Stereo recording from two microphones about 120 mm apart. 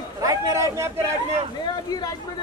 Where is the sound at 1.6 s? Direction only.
35° left (ahead or behind).